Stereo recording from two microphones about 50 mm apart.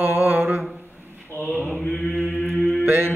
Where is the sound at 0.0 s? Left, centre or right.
Right.